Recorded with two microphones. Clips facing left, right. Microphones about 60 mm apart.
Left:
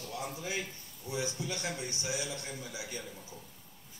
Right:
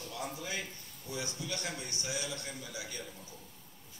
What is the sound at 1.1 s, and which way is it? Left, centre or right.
Speech, left.